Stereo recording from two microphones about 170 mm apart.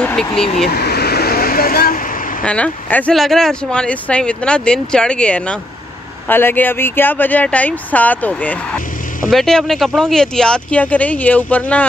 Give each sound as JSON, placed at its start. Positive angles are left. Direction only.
{"t": 0.0, "sound": "speech", "side_deg": 5}
{"t": 0.7, "sound": "vehicle", "side_deg": 70}
{"t": 2.4, "sound": "speech", "side_deg": 5}